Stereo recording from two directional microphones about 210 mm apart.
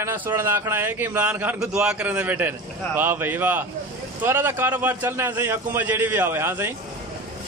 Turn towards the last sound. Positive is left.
turn(degrees=-10)  # may be behind; listen again after turning